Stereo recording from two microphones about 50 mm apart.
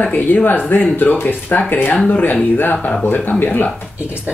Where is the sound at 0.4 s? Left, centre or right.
Left.